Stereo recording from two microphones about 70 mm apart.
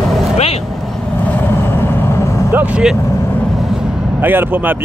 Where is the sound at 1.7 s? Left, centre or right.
Left.